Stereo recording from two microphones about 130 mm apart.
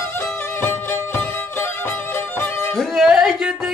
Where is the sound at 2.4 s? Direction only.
15° left (ahead or behind).